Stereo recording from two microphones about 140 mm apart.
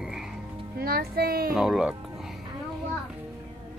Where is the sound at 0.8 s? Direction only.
90° right.